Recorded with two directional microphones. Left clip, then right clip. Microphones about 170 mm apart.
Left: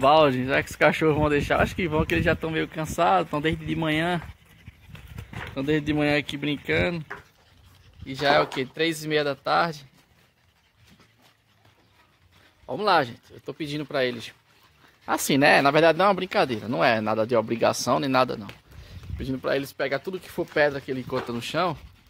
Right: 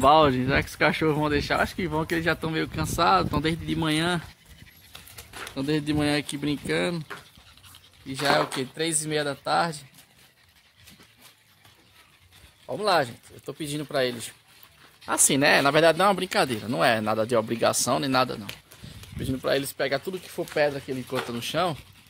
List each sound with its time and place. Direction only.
0.0 s speech: 10° left (ahead or behind)
5.6 s speech: 15° left (ahead or behind)
8.1 s speech: 15° left (ahead or behind)
12.6 s speech: 20° left (ahead or behind)
13.5 s speech: 5° left (ahead or behind)
15.0 s speech: 15° left (ahead or behind)
18.9 s speech: 5° left (ahead or behind)
20.5 s speech: 20° left (ahead or behind)